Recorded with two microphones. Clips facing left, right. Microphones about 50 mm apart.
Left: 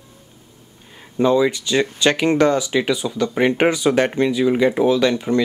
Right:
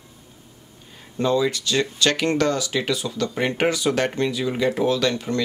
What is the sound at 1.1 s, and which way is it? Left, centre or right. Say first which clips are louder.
Speech: left 5 dB; centre.